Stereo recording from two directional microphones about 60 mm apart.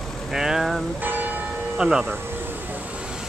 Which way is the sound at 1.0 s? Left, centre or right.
Right.